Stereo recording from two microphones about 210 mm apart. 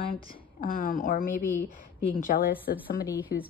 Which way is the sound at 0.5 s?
40° left (ahead or behind).